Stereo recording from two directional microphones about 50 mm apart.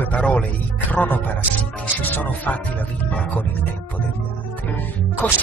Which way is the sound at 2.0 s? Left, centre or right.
Left.